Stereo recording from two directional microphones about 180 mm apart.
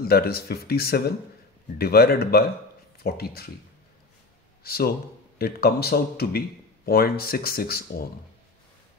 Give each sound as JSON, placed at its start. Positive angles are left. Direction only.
{"t": 0.0, "sound": "speech", "side_deg": 60}
{"t": 4.6, "sound": "speech", "side_deg": 60}